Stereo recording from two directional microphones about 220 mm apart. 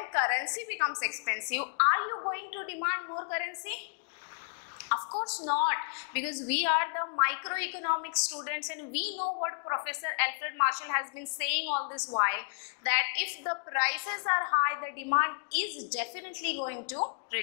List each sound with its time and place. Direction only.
0.0 s a woman's voice: 15° left (ahead or behind)
4.8 s a sound: 25° left (ahead or behind)
5.7 s a woman's voice: 15° left (ahead or behind)
11.8 s a woman's voice: 25° left (ahead or behind)